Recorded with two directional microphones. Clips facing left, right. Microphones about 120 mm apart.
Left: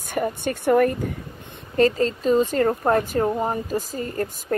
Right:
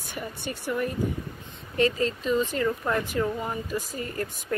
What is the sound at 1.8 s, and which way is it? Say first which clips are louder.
Speech: left 5 dB; 40° left (ahead or behind).